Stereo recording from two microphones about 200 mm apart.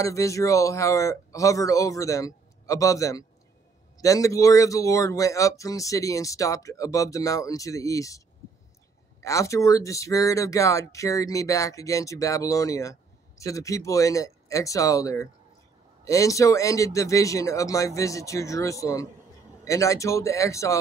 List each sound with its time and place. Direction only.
0.0 s speech: 15° left (ahead or behind)
9.2 s speech: 15° left (ahead or behind)